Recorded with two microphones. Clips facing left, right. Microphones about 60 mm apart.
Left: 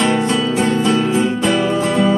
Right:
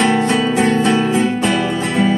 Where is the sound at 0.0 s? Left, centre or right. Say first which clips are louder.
Right 1 dB; right.